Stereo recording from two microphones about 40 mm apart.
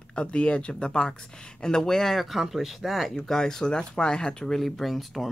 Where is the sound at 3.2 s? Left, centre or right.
Centre.